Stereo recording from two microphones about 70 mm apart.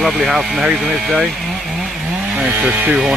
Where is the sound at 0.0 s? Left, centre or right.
Centre.